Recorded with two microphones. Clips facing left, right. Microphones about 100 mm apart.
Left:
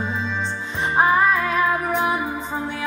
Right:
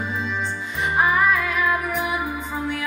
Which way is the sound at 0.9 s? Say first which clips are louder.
Left 2 dB; 30° left (ahead or behind).